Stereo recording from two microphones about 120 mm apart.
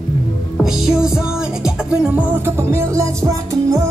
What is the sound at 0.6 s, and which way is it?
Music, 5° right (ahead or behind).